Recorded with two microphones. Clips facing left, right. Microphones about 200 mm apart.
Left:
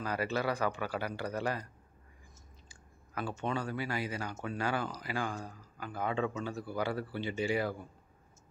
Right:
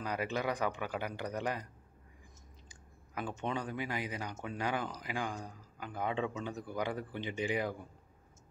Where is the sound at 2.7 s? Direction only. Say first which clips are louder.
Left 2 dB; 15° right (ahead or behind).